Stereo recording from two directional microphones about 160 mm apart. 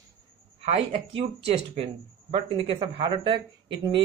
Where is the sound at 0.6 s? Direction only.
40° right (ahead or behind).